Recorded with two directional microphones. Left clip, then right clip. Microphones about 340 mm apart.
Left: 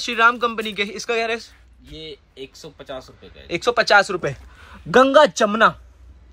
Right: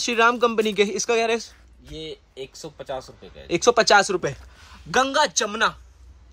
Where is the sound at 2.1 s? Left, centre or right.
Right.